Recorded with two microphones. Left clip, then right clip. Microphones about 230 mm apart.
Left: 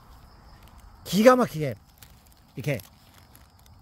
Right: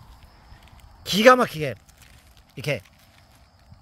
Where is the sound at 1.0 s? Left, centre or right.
Centre.